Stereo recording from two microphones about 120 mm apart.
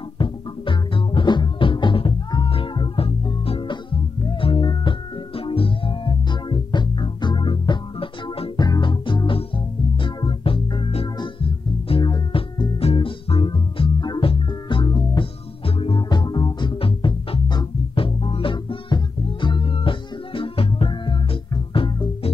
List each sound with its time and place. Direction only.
0.2 s music: 45° left (ahead or behind)
16.0 s music: 40° left (ahead or behind)
16.7 s music: 50° left (ahead or behind)